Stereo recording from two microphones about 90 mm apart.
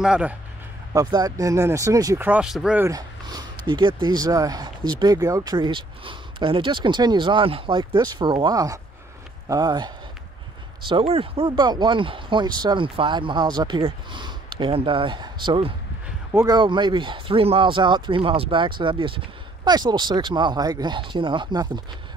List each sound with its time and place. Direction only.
0.0 s speech: 10° right (ahead or behind)
0.9 s speech: 40° right (ahead or behind)
2.1 s speech: 20° right (ahead or behind)
2.4 s speech: 5° right (ahead or behind)
2.9 s speech: 45° right (ahead or behind)
5.1 s speech: 40° right (ahead or behind)
5.7 s speech: 70° right (ahead or behind); by 9.9 s 50° right (ahead or behind)
10.9 s speech: 85° right
11.5 s speech: 50° right (ahead or behind)
12.8 s speech: 70° right (ahead or behind)
19.7 s speech: 50° right (ahead or behind)